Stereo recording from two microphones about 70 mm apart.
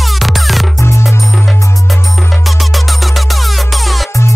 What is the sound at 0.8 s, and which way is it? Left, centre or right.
Music, left.